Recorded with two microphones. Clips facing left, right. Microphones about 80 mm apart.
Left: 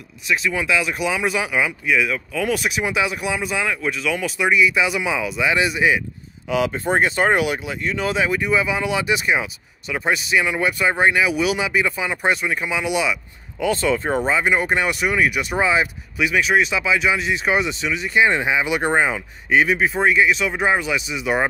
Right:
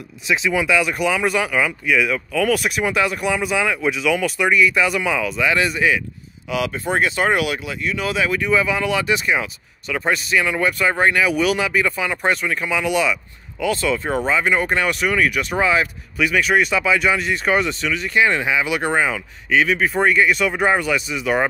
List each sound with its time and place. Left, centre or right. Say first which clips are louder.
0.5 s speech: right 4 dB; centre
6.5 s speech: left 2 dB; left; by 13.2 s centre
13.6 s speech: left 1 dB; left
16.2 s speech: right 1 dB; centre
19.9 s speech: right 1 dB; centre